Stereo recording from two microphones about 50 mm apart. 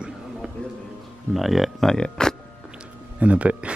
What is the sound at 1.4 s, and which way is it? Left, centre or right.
Speech, centre.